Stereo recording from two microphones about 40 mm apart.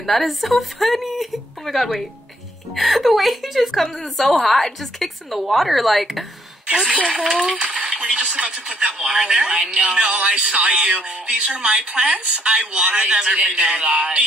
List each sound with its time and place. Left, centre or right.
0.0 s a woman's voice: centre
6.7 s a woman's voice: centre
7.8 s radio: right
8.5 s speech: centre
9.7 s a woman's voice: right
13.6 s a woman's voice: right
13.9 s a man's voice: right